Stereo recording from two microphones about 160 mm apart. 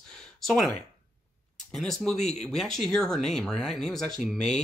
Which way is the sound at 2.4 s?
Centre (ahead or behind).